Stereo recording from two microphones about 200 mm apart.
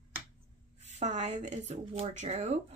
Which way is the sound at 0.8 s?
35° right (ahead or behind).